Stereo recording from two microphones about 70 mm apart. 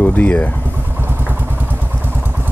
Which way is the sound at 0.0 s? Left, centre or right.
Left.